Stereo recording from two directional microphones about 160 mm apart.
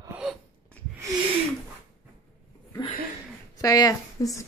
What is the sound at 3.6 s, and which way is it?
Speech, 20° left (ahead or behind).